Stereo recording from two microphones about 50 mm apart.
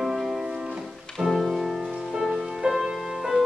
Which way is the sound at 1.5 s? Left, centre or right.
Centre.